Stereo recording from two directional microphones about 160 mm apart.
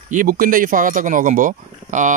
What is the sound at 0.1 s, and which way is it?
Speech, 60° right (ahead or behind).